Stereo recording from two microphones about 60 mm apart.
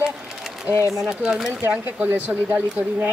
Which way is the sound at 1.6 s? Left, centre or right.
Right.